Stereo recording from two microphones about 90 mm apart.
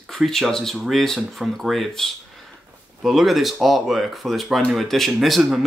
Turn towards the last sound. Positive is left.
turn(degrees=-5)  # may be behind; listen again after turning